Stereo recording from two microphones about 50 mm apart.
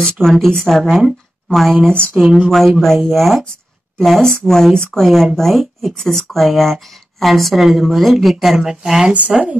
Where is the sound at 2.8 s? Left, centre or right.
Centre.